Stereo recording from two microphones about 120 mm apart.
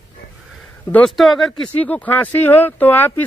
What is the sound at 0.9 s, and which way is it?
Speech, 5° left (ahead or behind).